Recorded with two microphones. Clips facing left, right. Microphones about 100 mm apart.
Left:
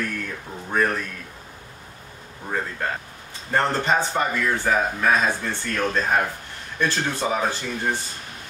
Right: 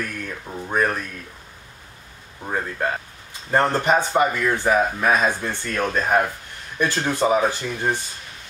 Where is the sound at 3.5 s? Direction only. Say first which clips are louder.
Right 3 dB; 15° right (ahead or behind).